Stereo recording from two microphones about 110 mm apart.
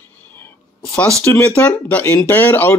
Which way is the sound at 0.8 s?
10° left (ahead or behind).